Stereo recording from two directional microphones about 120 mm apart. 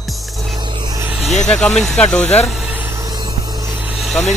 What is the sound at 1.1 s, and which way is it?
Speech, centre (ahead or behind).